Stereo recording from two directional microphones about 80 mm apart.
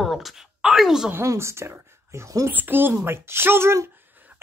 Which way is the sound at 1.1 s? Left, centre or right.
Right.